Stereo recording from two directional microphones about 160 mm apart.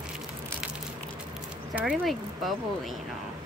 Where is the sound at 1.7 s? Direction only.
5° right (ahead or behind).